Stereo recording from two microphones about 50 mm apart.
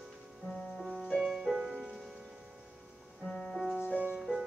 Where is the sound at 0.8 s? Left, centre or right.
Centre.